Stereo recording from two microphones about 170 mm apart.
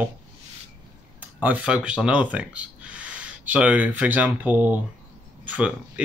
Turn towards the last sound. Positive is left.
turn(degrees=-10)  # may be behind; listen again after turning